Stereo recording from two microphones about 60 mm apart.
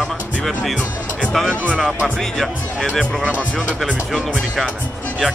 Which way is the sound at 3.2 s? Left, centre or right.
Right.